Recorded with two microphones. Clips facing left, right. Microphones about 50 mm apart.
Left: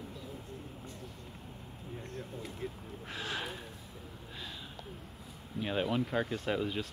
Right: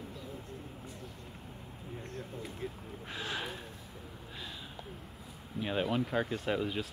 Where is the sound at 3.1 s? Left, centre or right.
Centre.